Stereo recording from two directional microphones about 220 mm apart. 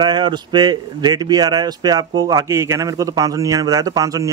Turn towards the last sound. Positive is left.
turn(degrees=-15)  # may be behind; listen again after turning